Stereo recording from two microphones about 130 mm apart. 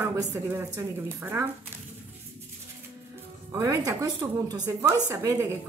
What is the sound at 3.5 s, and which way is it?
A woman's voice, 25° right (ahead or behind).